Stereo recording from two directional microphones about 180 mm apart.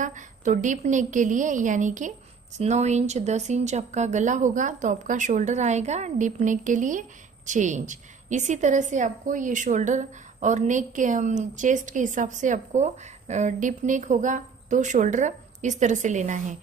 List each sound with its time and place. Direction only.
0.0 s a woman's voice: 45° right (ahead or behind)